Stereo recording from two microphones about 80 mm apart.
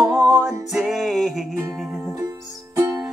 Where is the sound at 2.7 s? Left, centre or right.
Right.